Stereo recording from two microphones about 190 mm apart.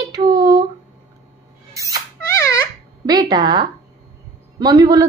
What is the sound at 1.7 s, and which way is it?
Squeak, 15° right (ahead or behind).